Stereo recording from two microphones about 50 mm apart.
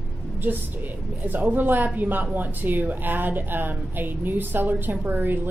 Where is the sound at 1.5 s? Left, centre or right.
Right.